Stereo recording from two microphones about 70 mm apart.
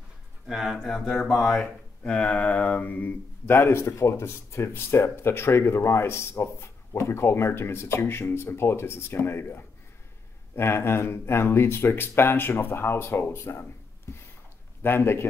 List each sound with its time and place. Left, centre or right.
0.5 s speech: centre
2.0 s speech: centre; by 13.7 s left
14.1 s a sound: left
14.8 s speech: left